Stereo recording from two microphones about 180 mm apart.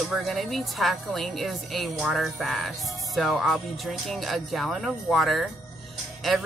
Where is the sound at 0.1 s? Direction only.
Centre (ahead or behind).